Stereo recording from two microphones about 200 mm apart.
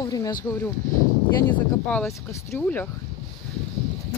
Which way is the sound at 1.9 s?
10° left (ahead or behind).